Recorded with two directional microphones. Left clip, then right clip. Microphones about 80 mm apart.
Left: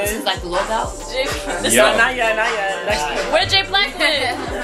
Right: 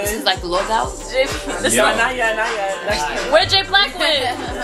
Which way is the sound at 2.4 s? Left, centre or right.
Right.